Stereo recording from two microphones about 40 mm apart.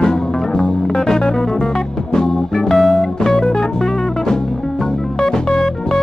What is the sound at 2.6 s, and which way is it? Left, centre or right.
Music, centre.